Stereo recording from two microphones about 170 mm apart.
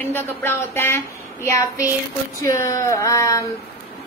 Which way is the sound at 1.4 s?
20° left (ahead or behind).